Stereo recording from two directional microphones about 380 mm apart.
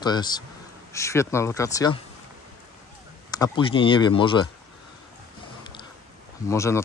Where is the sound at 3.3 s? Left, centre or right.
Centre.